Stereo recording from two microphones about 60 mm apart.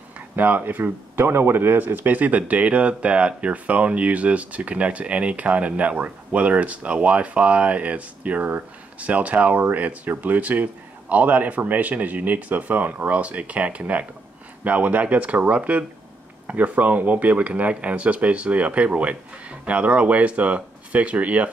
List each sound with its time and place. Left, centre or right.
0.4 s speech: right